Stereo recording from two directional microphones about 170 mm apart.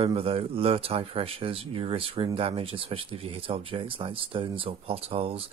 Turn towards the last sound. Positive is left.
turn(degrees=-35)  # may be behind; listen again after turning